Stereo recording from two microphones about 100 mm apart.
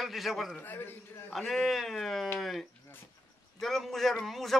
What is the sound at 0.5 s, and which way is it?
Speech, 20° left (ahead or behind).